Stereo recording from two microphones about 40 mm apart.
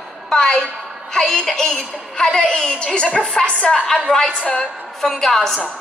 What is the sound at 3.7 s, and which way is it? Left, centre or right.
Speech, centre.